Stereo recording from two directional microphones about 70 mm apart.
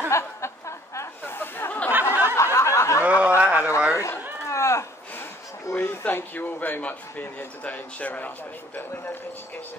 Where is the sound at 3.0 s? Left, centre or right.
Centre.